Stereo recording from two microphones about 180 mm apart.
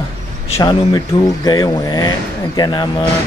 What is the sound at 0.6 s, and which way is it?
Speech, 20° left (ahead or behind).